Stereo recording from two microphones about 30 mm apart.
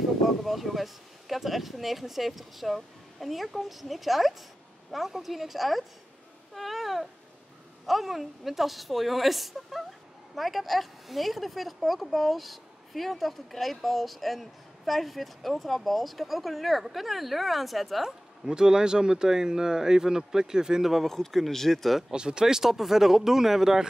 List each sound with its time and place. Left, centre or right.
0.4 s speech: centre
6.5 s babbling: centre
7.8 s speech: centre
18.5 s speech: right
20.8 s speech: centre
21.1 s speech: centre
22.1 s speech: right
22.6 s speech: centre